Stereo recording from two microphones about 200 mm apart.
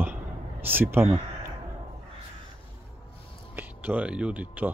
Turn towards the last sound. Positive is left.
turn(degrees=-10)  # may be behind; listen again after turning